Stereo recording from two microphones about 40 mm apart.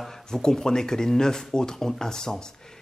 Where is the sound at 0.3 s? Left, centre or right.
Centre.